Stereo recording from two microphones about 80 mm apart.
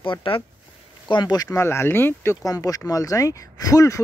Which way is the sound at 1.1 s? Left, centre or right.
Left.